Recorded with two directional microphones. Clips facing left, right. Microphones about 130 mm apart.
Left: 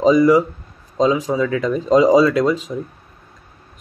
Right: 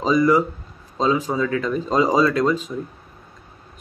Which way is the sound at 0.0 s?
15° left (ahead or behind).